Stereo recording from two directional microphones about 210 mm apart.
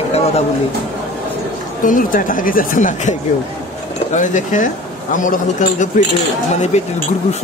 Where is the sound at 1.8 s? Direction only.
40° left (ahead or behind).